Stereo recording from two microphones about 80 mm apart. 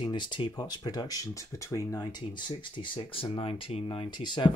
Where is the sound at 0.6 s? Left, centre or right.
Left.